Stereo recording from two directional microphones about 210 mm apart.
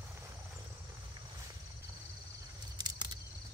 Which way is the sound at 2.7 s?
20° right (ahead or behind).